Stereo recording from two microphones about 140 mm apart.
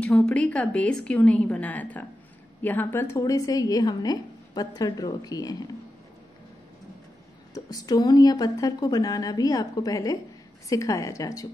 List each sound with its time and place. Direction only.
0.0 s a woman's voice: 10° left (ahead or behind); by 5.6 s 25° left (ahead or behind)
7.5 s a woman's voice: 25° left (ahead or behind)